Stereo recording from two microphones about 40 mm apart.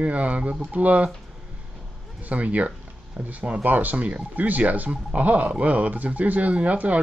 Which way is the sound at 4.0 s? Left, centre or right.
Right.